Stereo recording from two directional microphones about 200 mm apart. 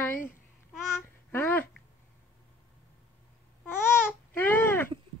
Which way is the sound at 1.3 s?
10° left (ahead or behind).